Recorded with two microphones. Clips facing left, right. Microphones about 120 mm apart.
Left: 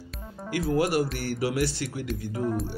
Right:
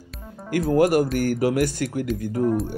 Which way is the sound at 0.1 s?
Centre (ahead or behind).